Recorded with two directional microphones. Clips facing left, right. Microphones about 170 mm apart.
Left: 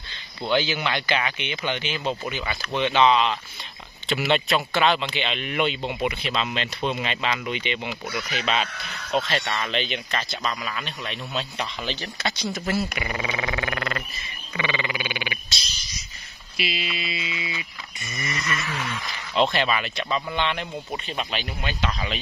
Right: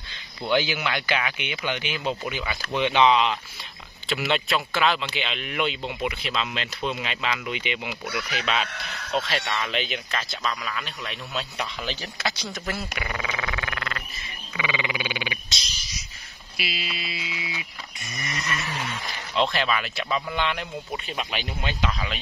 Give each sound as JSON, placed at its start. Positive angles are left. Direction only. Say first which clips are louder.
{"t": 0.5, "sound": "speech", "louder": "even", "side_deg": -15}
{"t": 4.1, "sound": "a man's voice", "louder": "left 3 dB", "side_deg": 0}
{"t": 9.1, "sound": "a man's voice", "louder": "left 2 dB", "side_deg": 0}
{"t": 13.1, "sound": "frog", "louder": "left 3 dB", "side_deg": 25}
{"t": 14.5, "sound": "frog", "louder": "left 1 dB", "side_deg": -10}
{"t": 16.5, "sound": "a sound", "louder": "left 4 dB", "side_deg": 0}
{"t": 18.6, "sound": "a sound", "louder": "left 1 dB", "side_deg": -35}
{"t": 19.3, "sound": "a man's voice", "louder": "left 2 dB", "side_deg": 0}